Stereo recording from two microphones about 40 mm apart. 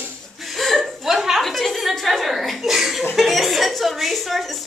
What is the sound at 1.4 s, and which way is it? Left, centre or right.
Chuckle, centre.